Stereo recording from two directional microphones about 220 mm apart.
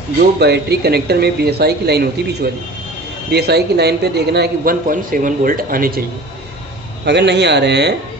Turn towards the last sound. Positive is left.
turn(degrees=-50)  # may be behind; listen again after turning